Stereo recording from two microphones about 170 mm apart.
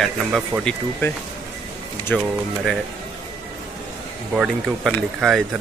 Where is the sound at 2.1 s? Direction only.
Centre (ahead or behind).